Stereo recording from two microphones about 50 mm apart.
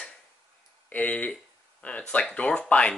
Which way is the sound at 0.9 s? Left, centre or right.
Left.